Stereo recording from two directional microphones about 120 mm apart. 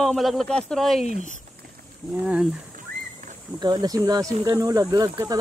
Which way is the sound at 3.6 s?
35° right (ahead or behind).